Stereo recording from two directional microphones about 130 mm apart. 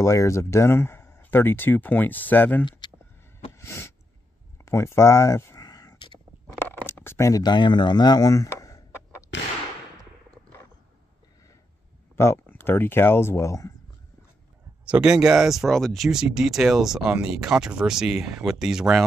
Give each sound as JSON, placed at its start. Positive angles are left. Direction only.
{"t": 0.0, "sound": "speech", "side_deg": 20}
{"t": 2.8, "sound": "a sound", "side_deg": 35}
{"t": 3.5, "sound": "a sound", "side_deg": 20}
{"t": 6.9, "sound": "speech", "side_deg": 20}
{"t": 12.2, "sound": "speech", "side_deg": 20}
{"t": 14.9, "sound": "speech", "side_deg": -5}